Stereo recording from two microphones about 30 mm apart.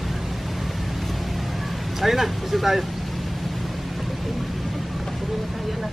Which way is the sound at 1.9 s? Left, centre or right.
Centre.